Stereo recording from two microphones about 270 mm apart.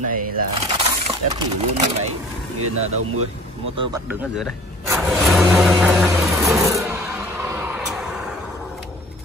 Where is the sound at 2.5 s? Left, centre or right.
Right.